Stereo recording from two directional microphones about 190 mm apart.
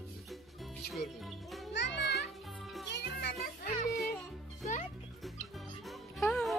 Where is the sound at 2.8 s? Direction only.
60° left (ahead or behind).